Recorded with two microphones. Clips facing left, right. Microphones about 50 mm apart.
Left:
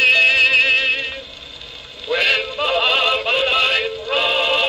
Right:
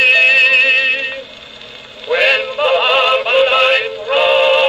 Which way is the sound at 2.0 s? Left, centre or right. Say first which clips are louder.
Right 5 dB; right.